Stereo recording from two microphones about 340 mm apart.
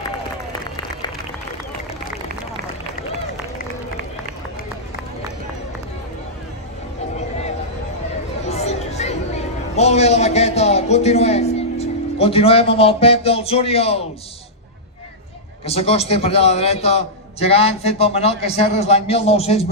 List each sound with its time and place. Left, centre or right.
8.5 s a sound: centre
9.8 s a man's voice: centre
15.6 s a man's voice: centre